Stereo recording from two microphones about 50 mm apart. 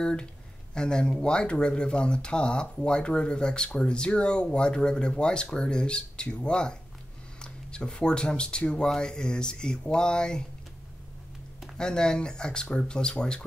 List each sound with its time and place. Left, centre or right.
0.0 s speech: centre
11.7 s speech: centre